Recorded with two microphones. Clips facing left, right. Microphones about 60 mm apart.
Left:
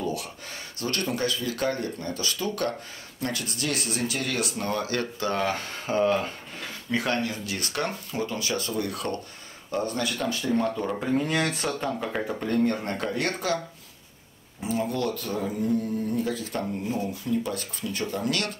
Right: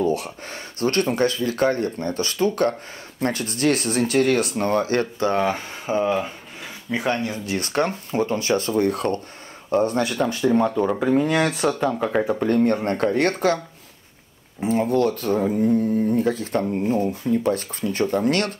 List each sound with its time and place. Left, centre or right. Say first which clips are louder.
0.0 s speech: right 8 dB; right; by 7.3 s centre
7.4 s speech: right 7 dB; right
11.2 s speech: right 6 dB; centre
12.8 s speech: right 8 dB; right
14.6 s speech: right 8 dB; right